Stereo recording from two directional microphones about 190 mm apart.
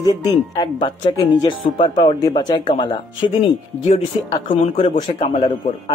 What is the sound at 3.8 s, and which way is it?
A man's voice, 30° left (ahead or behind).